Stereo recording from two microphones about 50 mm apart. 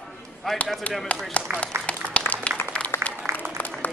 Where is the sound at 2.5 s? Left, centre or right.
Left.